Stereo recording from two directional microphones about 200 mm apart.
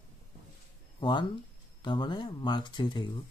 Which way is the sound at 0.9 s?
25° left (ahead or behind).